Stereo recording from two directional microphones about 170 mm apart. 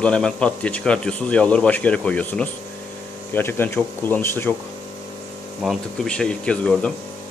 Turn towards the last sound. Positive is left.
turn(degrees=5)  # may be behind; listen again after turning